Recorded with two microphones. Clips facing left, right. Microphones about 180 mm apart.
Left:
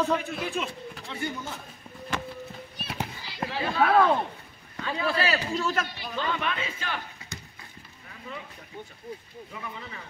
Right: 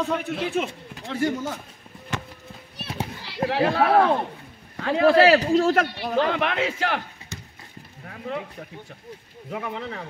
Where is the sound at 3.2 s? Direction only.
70° right (ahead or behind).